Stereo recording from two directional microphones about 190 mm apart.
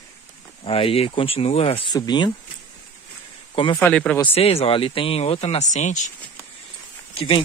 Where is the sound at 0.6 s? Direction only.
30° left (ahead or behind).